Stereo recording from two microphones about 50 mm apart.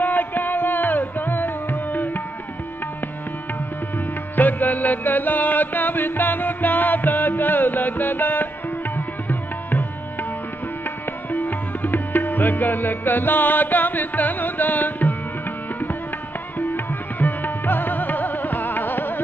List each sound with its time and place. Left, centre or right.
0.0 s music: left
4.4 s music: left
11.2 s music: left
16.5 s music: left